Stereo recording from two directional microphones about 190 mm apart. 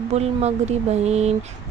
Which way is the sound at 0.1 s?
35° right (ahead or behind).